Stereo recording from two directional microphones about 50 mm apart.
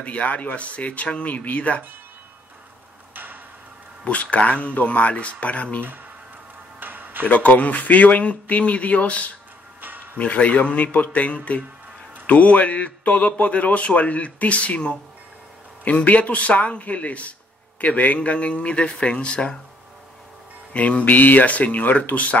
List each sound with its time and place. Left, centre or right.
0.0 s speech: left
4.0 s speech: left
6.8 s music: right
7.2 s speech: left
9.8 s a sound: right
10.1 s speech: left
15.8 s speech: left
20.7 s speech: left